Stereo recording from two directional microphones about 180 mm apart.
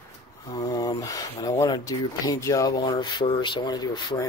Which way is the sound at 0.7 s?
20° left (ahead or behind).